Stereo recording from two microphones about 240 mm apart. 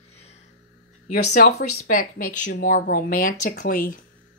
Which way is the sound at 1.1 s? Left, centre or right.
Left.